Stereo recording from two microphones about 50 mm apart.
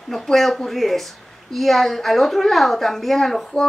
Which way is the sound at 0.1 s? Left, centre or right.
Centre.